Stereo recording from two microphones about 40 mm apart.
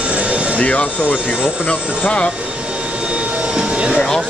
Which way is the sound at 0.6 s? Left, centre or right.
Left.